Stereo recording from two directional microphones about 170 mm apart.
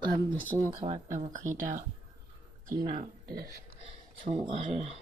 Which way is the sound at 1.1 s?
45° right (ahead or behind).